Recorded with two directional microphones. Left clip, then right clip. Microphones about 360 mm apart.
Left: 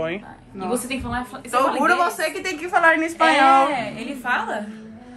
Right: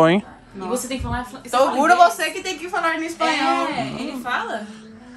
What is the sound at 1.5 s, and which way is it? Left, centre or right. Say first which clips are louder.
Speech: right 2 dB; right.